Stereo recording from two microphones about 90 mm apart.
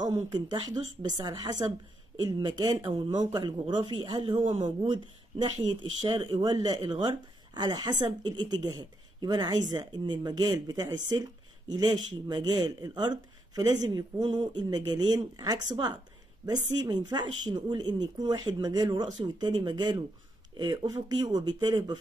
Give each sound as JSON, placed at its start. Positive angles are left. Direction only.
{"t": 0.3, "sound": "speech", "side_deg": -55}